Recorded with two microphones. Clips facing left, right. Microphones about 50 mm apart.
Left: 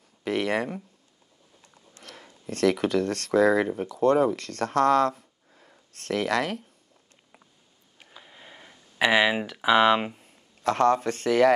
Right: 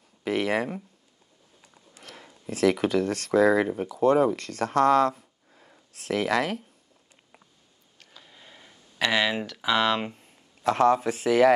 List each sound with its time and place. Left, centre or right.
0.2 s speech: centre
8.0 s a sound: centre
10.1 s speech: centre